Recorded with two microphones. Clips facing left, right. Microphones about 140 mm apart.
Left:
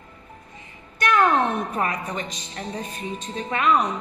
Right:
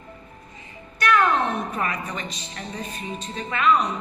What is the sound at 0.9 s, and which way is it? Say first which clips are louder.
Music: right 1 dB; 45° left (ahead or behind).